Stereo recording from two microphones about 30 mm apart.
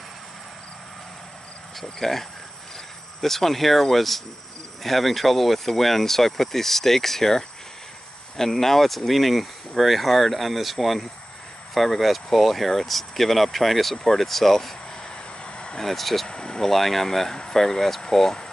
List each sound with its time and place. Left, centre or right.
1.8 s speech: centre
15.4 s vehicle: left
15.8 s speech: centre
16.3 s vehicle: left
16.6 s speech: centre